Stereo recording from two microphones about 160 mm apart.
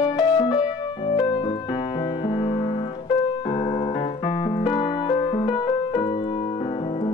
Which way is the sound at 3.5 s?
30° left (ahead or behind).